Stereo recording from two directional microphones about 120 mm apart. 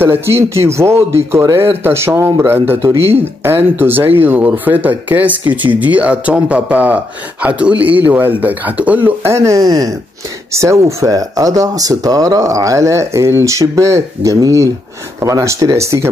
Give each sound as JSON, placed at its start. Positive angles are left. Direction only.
{"t": 0.0, "sound": "speech", "side_deg": -20}